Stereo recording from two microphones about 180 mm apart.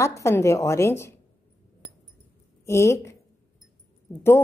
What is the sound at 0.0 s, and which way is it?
A woman's voice, 15° left (ahead or behind).